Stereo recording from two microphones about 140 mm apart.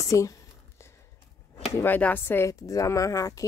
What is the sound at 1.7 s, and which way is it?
Speech, 15° left (ahead or behind).